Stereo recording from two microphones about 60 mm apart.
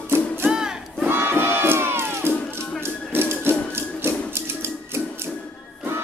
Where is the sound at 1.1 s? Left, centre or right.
Right.